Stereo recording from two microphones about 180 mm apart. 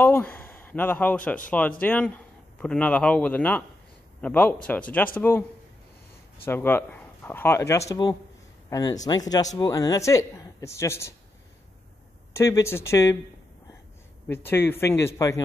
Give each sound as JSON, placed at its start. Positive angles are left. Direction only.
{"t": 0.0, "sound": "speech", "side_deg": 10}
{"t": 6.4, "sound": "speech", "side_deg": 10}
{"t": 12.4, "sound": "speech", "side_deg": 15}
{"t": 14.2, "sound": "speech", "side_deg": 10}